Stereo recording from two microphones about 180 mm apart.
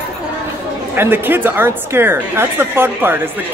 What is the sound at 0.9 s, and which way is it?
Speech, 10° right (ahead or behind).